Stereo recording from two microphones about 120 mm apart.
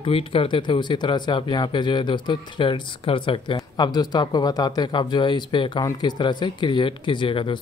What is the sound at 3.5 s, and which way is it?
Speech, 35° left (ahead or behind).